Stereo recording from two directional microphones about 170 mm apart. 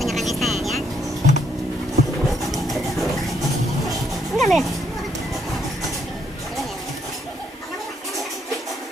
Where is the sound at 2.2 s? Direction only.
Centre (ahead or behind).